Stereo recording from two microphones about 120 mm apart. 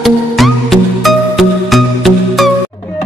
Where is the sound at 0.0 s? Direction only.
Centre (ahead or behind).